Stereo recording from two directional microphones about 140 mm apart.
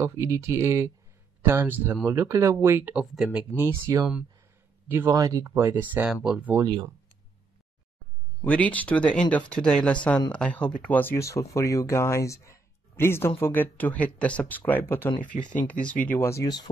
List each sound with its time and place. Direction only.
0.0 s speech: 20° right (ahead or behind)
8.5 s speech: 10° left (ahead or behind)
15.2 s speech: 70° left (ahead or behind)
15.6 s speech: 10° left (ahead or behind)